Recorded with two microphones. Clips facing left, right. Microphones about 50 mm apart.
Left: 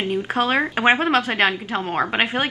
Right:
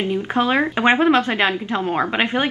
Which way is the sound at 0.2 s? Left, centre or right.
Centre.